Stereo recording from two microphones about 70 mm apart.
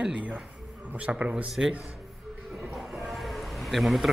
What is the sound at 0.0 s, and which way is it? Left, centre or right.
A man's voice, right.